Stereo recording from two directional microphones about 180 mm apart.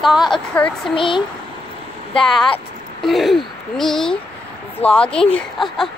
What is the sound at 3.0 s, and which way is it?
Speech, centre (ahead or behind).